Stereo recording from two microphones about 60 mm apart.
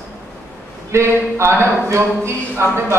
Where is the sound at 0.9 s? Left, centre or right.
Right.